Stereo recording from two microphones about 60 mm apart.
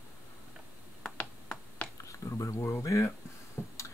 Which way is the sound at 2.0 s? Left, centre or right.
Left.